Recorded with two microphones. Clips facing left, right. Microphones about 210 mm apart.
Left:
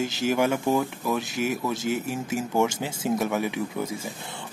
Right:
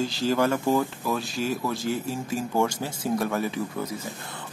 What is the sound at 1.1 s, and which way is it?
Speech, 20° left (ahead or behind).